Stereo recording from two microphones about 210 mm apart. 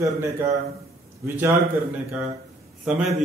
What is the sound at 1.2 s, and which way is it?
Speech, 10° right (ahead or behind).